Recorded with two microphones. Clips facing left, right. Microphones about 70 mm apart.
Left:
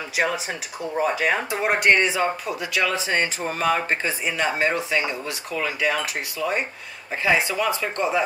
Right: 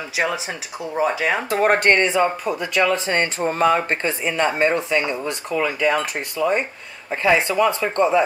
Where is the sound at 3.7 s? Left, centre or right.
Right.